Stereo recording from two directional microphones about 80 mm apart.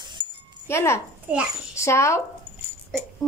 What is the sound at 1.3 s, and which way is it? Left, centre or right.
Speech, centre.